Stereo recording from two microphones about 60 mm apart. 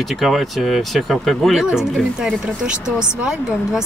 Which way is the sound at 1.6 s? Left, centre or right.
Centre.